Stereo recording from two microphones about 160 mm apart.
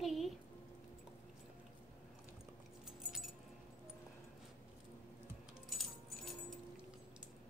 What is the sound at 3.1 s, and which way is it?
Keys jangling, centre (ahead or behind).